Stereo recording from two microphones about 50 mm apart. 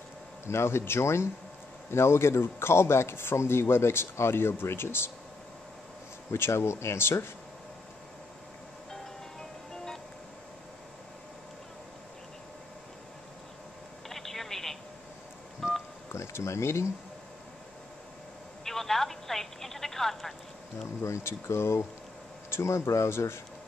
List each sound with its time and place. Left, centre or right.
0.5 s a man's voice: left
6.3 s a man's voice: left
8.9 s music: centre
14.0 s telephone: centre
16.1 s speech: left
18.6 s telephone: centre
21.0 s speech: left
21.3 s a man's voice: left
22.5 s a man's voice: left